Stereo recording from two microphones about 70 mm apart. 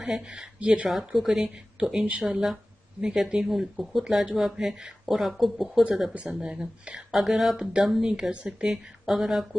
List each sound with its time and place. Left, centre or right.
0.0 s speech: centre
0.8 s speech: centre
3.4 s speech: centre
6.1 s speech: centre